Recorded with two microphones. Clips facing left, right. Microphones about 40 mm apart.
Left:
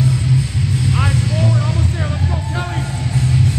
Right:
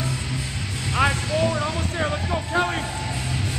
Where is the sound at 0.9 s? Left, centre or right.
Centre.